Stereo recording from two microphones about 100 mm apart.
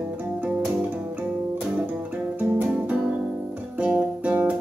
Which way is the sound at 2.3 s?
15° right (ahead or behind).